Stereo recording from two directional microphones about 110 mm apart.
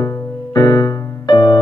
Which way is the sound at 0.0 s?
35° left (ahead or behind).